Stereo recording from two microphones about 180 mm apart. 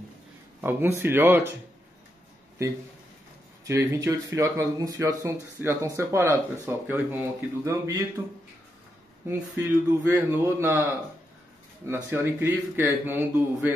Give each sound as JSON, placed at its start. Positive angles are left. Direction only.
{"t": 0.6, "sound": "speech", "side_deg": -10}
{"t": 3.6, "sound": "speech", "side_deg": -15}
{"t": 9.3, "sound": "speech", "side_deg": -10}